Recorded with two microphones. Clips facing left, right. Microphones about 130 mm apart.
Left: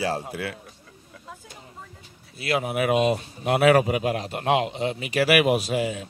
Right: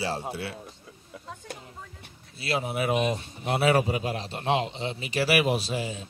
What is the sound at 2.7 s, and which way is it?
Speech, 30° right (ahead or behind).